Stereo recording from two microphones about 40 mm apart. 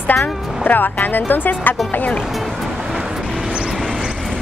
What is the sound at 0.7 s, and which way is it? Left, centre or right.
Speech, left.